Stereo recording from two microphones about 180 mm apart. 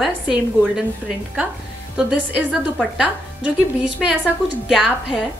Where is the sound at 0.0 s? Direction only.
5° right (ahead or behind).